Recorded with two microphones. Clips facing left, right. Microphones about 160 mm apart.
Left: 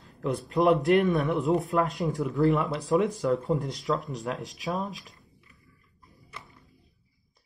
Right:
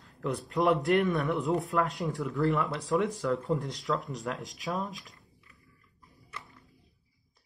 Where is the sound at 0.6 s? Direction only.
20° left (ahead or behind).